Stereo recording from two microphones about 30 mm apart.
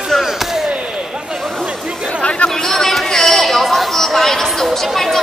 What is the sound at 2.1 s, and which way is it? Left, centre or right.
Chatter, left.